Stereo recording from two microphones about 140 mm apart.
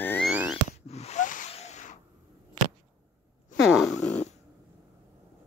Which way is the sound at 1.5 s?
55° left (ahead or behind).